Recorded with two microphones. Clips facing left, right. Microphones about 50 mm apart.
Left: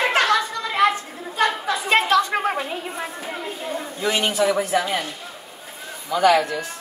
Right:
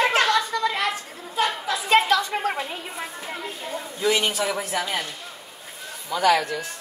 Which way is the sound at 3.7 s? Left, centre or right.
Centre.